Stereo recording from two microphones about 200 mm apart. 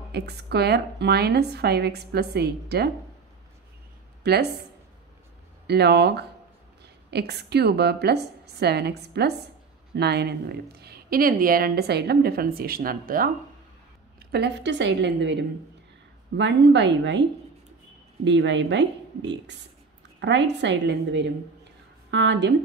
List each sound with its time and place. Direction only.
0.1 s a woman's voice: 55° right (ahead or behind)
4.2 s a woman's voice: 55° right (ahead or behind)
5.7 s a woman's voice: 55° right (ahead or behind)
14.3 s a woman's voice: 60° right (ahead or behind)
18.2 s a woman's voice: 65° right (ahead or behind)